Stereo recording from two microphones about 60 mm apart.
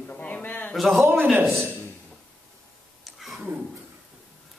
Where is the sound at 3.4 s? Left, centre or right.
Right.